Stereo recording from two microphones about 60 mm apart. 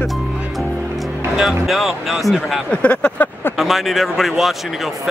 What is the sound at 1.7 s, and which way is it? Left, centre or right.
Speech, centre.